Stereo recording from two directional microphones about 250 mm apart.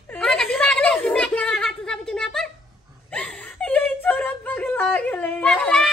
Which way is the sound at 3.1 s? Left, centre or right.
Centre.